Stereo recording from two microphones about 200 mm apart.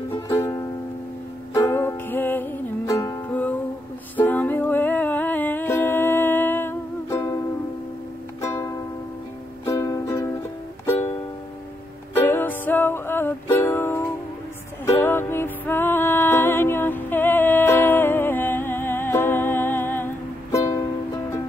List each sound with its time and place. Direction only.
0.1 s music: 15° left (ahead or behind)
8.4 s music: 15° left (ahead or behind)
12.3 s music: 10° left (ahead or behind)